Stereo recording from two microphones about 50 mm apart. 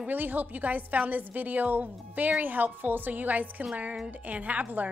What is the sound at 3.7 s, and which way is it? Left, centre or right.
A child's voice, right.